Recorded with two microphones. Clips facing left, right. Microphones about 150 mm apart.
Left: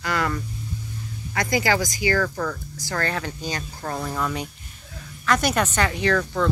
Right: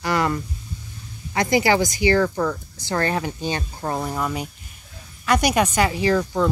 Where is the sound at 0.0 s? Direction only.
25° right (ahead or behind).